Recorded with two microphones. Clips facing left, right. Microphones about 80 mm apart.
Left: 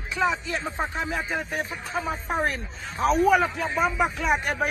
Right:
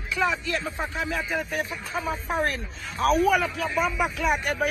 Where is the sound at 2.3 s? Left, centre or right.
Centre.